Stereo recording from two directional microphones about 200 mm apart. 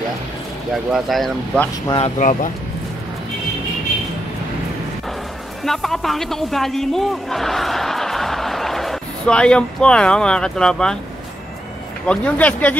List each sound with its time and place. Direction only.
0.9 s a man's voice: centre (ahead or behind)
1.9 s speech: 30° left (ahead or behind)
5.7 s a man's voice: centre (ahead or behind)
12.1 s speech: 5° left (ahead or behind)